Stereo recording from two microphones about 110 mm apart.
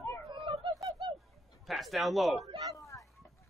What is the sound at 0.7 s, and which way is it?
Bird, 35° right (ahead or behind).